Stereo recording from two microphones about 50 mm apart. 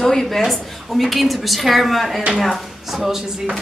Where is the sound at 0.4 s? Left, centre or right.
Centre.